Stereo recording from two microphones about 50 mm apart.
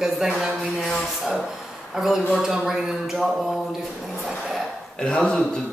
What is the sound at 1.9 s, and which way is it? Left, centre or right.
Speech, centre.